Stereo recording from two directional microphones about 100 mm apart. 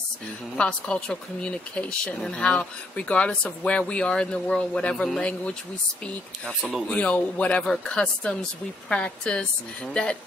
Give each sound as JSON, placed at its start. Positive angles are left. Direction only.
{"t": 0.6, "sound": "speech", "side_deg": 10}
{"t": 6.9, "sound": "speech", "side_deg": 10}